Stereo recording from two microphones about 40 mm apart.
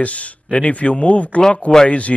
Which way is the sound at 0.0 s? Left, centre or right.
Left.